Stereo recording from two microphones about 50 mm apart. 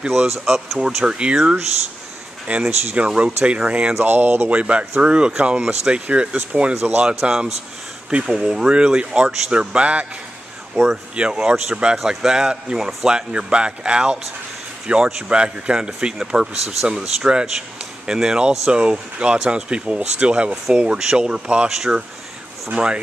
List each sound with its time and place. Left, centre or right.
0.2 s speech: centre
1.0 s speech: centre
2.5 s speech: right
3.0 s speech: right
4.0 s speech: right
4.5 s speech: right
7.2 s speech: centre; by 10.0 s right
10.8 s speech: centre; by 22.9 s right